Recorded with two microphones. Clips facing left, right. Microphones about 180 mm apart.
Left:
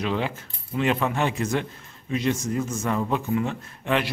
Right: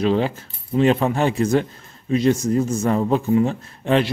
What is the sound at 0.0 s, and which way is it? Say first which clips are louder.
A man's voice: right 7 dB; 35° right (ahead or behind).